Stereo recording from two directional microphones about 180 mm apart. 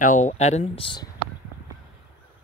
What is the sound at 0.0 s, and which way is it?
Speech, 45° left (ahead or behind).